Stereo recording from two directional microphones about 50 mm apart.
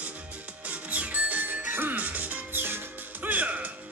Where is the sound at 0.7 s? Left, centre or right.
Right.